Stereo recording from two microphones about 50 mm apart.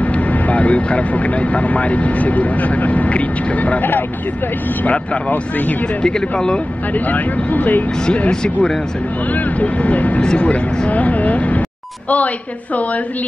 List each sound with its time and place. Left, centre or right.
0.0 s speech: left
6.0 s speech: centre
6.9 s speech: left